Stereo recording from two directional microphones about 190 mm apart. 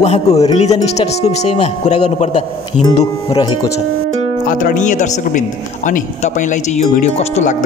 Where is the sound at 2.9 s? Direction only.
20° left (ahead or behind).